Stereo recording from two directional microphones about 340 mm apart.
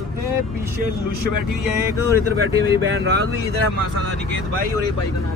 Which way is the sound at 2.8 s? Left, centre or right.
Right.